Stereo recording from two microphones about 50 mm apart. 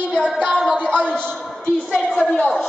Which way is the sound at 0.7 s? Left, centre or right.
Left.